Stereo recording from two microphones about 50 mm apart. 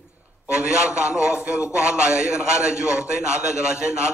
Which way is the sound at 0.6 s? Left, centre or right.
Centre.